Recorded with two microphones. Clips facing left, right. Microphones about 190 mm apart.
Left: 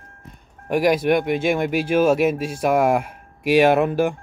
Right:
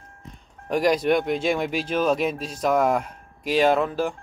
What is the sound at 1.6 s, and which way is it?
Speech, 55° left (ahead or behind).